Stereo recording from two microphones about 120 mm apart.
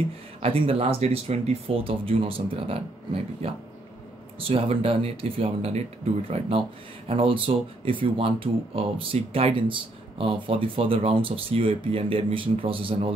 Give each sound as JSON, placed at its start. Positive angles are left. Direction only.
{"t": 0.4, "sound": "speech", "side_deg": -55}